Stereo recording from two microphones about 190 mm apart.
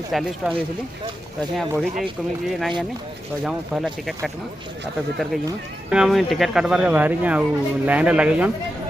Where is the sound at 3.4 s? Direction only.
5° right (ahead or behind).